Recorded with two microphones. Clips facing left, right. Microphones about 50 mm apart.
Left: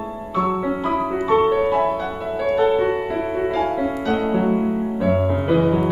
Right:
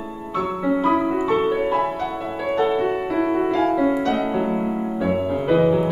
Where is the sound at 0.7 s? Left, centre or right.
Centre.